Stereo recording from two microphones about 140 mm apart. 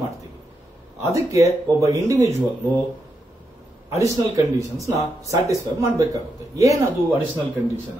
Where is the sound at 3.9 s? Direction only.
20° right (ahead or behind).